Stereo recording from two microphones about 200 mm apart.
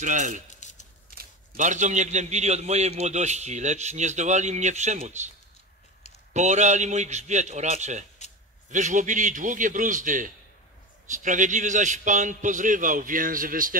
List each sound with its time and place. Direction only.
0.0 s a man's voice: 40° right (ahead or behind)
0.5 s a sound: 35° left (ahead or behind)
1.1 s a man's voice: 45° right (ahead or behind)
6.3 s a man's voice: 35° right (ahead or behind)
8.2 s a sound: 35° left (ahead or behind)
8.6 s a man's voice: 40° right (ahead or behind)